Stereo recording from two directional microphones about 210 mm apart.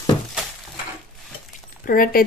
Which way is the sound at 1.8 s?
40° left (ahead or behind).